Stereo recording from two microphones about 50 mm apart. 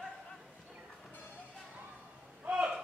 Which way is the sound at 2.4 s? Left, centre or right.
Right.